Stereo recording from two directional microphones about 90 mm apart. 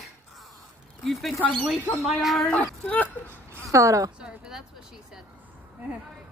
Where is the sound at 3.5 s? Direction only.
35° right (ahead or behind).